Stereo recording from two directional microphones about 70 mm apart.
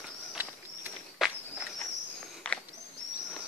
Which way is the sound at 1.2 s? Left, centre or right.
Centre.